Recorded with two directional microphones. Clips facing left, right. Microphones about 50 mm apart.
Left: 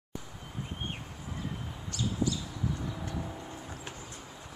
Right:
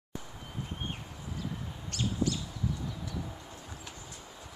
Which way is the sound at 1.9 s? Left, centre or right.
Right.